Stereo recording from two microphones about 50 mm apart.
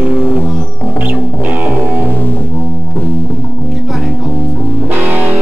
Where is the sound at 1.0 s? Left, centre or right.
Right.